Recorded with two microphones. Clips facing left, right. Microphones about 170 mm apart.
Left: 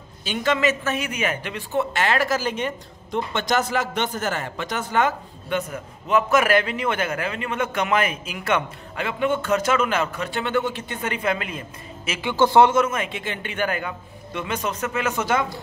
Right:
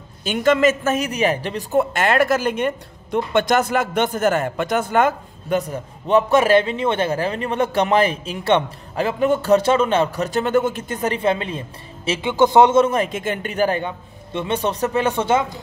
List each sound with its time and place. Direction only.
0.2 s a man's voice: 50° right (ahead or behind)
1.8 s speech: 50° right (ahead or behind); by 12.8 s 20° right (ahead or behind)
12.8 s speech: 35° right (ahead or behind)